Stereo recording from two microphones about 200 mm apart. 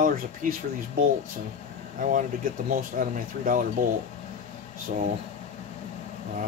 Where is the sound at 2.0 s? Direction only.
45° right (ahead or behind).